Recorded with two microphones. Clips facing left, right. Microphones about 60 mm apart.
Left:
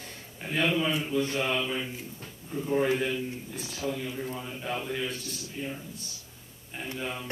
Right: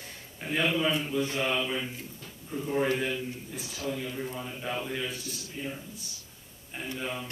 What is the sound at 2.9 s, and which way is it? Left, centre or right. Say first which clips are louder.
Speech: left 2 dB; centre.